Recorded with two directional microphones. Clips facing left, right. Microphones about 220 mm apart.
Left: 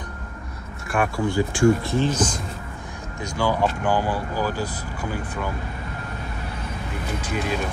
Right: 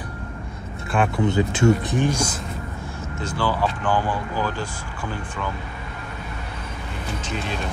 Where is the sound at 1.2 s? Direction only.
20° right (ahead or behind).